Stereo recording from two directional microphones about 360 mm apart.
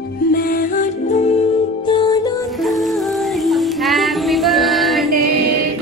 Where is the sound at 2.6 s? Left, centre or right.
Centre.